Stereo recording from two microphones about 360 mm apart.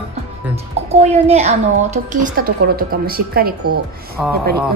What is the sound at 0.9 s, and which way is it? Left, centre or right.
A woman's voice, centre.